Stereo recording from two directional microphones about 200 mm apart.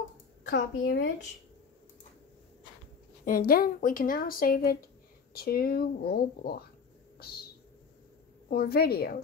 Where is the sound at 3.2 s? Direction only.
45° left (ahead or behind).